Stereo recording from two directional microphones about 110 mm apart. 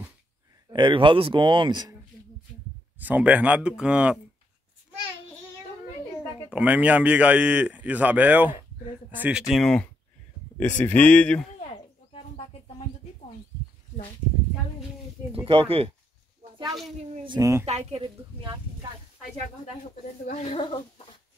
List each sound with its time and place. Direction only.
0.7 s speech: 50° right (ahead or behind)
3.0 s speech: 15° right (ahead or behind)
6.5 s speech: 10° right (ahead or behind)
9.5 s speech: 5° left (ahead or behind)
11.6 s insect: 65° left (ahead or behind)
15.3 s speech: 55° right (ahead or behind)
17.4 s speech: 30° right (ahead or behind)
17.6 s speech: 80° right
20.4 s speech: 60° left (ahead or behind)